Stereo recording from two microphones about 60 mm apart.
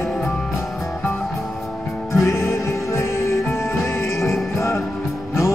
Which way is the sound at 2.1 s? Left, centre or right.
Left.